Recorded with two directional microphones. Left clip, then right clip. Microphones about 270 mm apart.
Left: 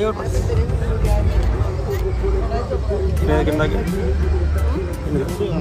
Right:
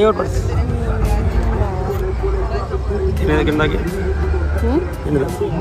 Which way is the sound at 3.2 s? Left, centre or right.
Centre.